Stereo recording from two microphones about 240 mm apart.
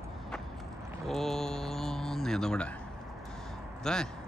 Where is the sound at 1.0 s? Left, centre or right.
Centre.